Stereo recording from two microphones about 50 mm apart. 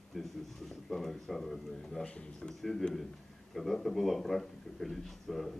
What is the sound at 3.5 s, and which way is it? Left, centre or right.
Speech, centre.